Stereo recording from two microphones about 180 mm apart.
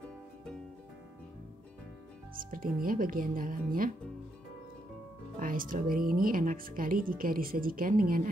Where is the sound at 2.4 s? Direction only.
50° right (ahead or behind).